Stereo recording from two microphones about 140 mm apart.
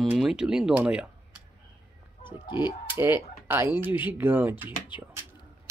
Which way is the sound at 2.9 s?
15° right (ahead or behind).